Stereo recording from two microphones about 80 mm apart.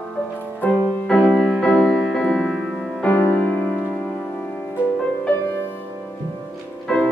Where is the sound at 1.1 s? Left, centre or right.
Centre.